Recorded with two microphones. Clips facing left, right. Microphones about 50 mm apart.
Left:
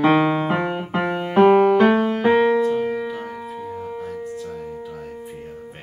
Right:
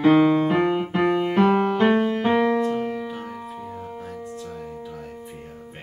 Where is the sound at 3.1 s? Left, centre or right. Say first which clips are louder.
Left 3 dB; centre.